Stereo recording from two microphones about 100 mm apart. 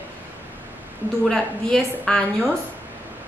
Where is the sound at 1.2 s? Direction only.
5° left (ahead or behind).